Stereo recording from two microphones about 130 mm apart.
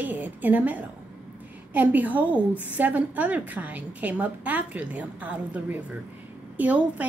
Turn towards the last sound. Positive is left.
turn(degrees=-10)  # may be behind; listen again after turning